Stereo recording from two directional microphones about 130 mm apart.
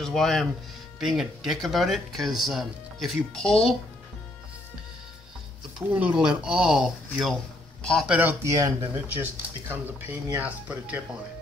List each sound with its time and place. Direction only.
0.0 s speech: 5° left (ahead or behind)
5.8 s a man's voice: 10° right (ahead or behind)
8.1 s speech: 15° right (ahead or behind)
8.5 s speech: 30° right (ahead or behind)
9.1 s speech: 15° right (ahead or behind)